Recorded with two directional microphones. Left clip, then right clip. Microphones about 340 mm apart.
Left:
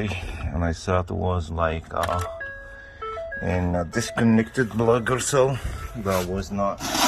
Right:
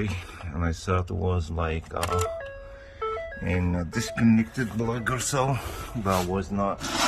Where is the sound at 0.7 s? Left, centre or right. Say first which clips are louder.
Left 4 dB; centre.